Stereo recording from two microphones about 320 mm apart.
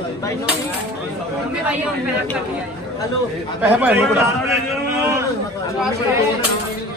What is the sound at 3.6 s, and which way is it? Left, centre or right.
Speech, centre.